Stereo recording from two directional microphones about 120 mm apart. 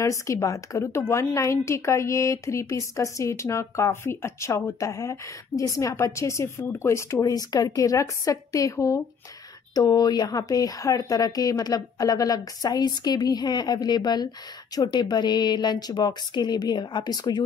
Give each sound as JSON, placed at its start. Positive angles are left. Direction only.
{"t": 0.0, "sound": "a woman's voice", "side_deg": 25}